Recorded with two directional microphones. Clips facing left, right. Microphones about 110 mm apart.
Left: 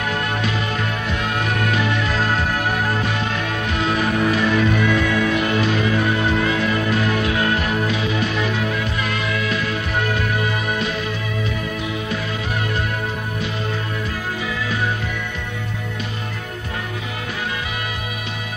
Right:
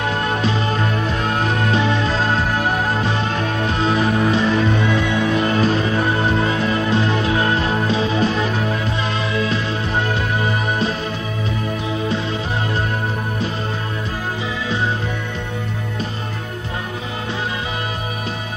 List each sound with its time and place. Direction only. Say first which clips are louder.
1.2 s music: right 1 dB; 30° right (ahead or behind)